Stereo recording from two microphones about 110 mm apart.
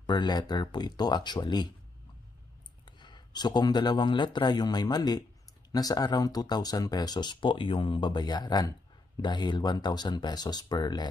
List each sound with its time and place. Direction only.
0.0 s speech: 45° left (ahead or behind)
2.8 s speech: 45° left (ahead or behind)